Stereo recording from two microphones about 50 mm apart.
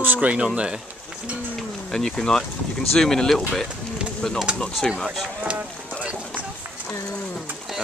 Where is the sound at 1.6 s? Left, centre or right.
Centre.